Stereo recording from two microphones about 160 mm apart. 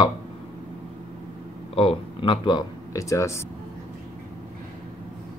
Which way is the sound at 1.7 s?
35° left (ahead or behind).